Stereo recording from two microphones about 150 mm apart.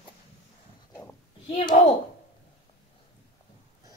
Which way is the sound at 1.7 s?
50° left (ahead or behind).